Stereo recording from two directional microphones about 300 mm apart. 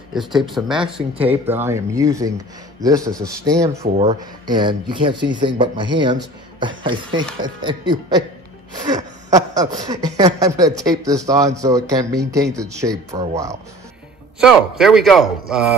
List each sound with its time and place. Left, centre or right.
0.1 s a man's voice: centre
0.8 s speech: centre
3.1 s a man's voice: centre
3.4 s speech: centre
14.4 s a man's voice: centre